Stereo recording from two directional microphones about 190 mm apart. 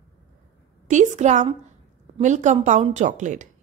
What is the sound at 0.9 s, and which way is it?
A woman's voice, 40° right (ahead or behind).